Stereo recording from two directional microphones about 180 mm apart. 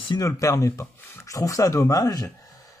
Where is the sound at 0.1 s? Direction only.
20° left (ahead or behind).